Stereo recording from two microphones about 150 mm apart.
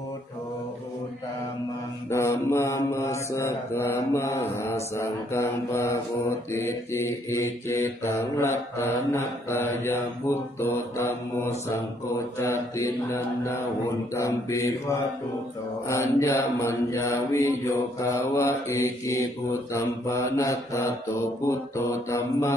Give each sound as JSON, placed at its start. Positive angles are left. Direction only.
{"t": 2.0, "sound": "mantra", "side_deg": 20}